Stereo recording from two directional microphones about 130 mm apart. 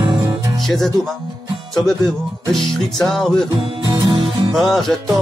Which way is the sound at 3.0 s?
Centre (ahead or behind).